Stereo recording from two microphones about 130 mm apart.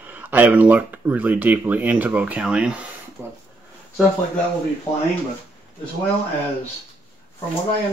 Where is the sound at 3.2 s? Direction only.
20° right (ahead or behind).